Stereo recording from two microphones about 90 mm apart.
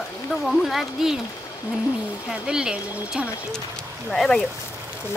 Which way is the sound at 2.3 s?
10° right (ahead or behind).